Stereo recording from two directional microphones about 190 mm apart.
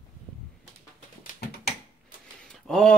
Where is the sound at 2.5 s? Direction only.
5° left (ahead or behind).